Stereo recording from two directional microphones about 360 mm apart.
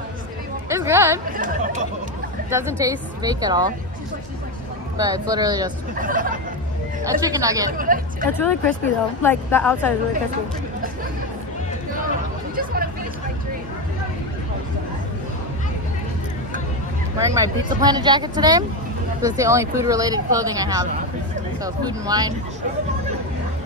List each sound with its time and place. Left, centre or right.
0.7 s music: centre
1.3 s chatter: right
2.5 s speech: centre
4.9 s speech: centre
5.9 s speech: right
7.2 s speech: centre
7.7 s speech: right
8.3 s speech: centre
12.5 s chatter: right
17.2 s speech: centre